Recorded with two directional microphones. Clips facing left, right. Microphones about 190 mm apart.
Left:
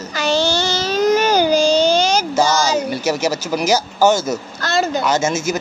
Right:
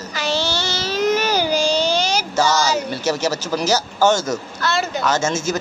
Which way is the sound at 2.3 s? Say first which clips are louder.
Right 1 dB; 10° left (ahead or behind).